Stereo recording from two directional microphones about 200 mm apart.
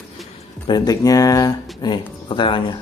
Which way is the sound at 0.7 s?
20° left (ahead or behind).